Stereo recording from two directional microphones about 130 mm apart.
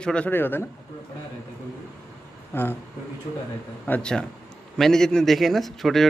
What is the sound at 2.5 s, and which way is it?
Speech, 20° left (ahead or behind).